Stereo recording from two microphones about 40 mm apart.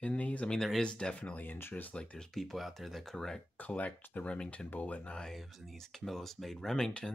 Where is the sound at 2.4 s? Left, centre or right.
Centre.